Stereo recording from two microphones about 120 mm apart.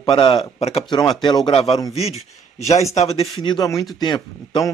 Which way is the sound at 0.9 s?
40° left (ahead or behind).